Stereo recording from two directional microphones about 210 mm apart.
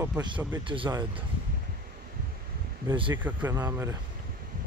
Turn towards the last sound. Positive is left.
turn(degrees=-15)  # may be behind; listen again after turning